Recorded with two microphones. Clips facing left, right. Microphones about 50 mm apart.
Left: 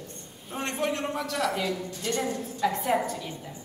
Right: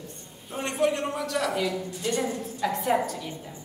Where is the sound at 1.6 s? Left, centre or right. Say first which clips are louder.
Right 2 dB; centre.